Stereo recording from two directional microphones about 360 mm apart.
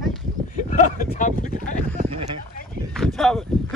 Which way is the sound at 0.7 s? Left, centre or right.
Left.